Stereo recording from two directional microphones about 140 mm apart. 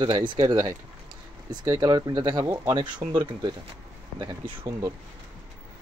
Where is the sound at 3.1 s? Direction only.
35° right (ahead or behind).